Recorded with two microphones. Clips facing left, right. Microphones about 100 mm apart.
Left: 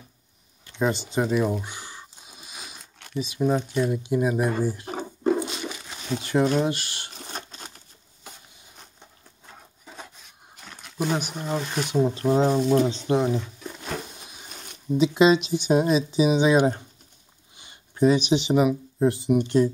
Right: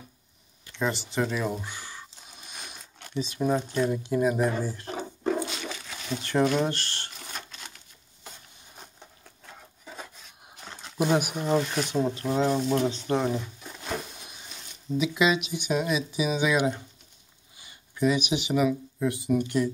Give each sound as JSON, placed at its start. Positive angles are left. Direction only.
{"t": 0.7, "sound": "speech", "side_deg": 15}
{"t": 2.3, "sound": "speech", "side_deg": 5}
{"t": 5.3, "sound": "a sound", "side_deg": 10}
{"t": 6.2, "sound": "speech", "side_deg": 10}
{"t": 7.2, "sound": "patter", "side_deg": 35}
{"t": 11.0, "sound": "speech", "side_deg": -5}
{"t": 11.7, "sound": "speech", "side_deg": 10}
{"t": 12.2, "sound": "speech", "side_deg": 35}
{"t": 12.7, "sound": "speech", "side_deg": 25}
{"t": 13.1, "sound": "speech", "side_deg": 10}
{"t": 15.0, "sound": "speech", "side_deg": 30}
{"t": 17.9, "sound": "speech", "side_deg": 30}